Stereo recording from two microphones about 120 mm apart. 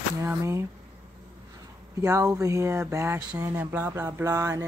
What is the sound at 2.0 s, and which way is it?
Speech, 25° right (ahead or behind).